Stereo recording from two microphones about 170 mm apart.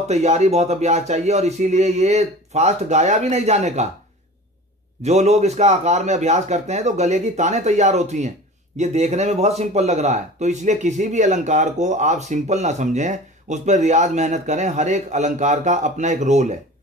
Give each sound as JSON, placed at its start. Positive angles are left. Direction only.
{"t": 0.1, "sound": "speech", "side_deg": -40}
{"t": 5.0, "sound": "speech", "side_deg": -40}